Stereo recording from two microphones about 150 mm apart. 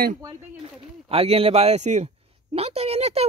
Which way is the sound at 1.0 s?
40° right (ahead or behind).